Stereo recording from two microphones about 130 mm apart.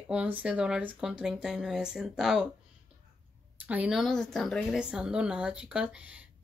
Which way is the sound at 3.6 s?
10° right (ahead or behind).